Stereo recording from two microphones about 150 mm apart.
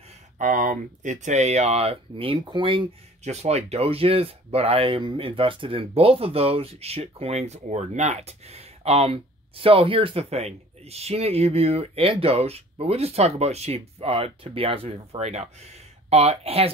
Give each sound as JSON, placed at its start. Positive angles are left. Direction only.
{"t": 0.4, "sound": "speech", "side_deg": -60}
{"t": 3.3, "sound": "speech", "side_deg": -45}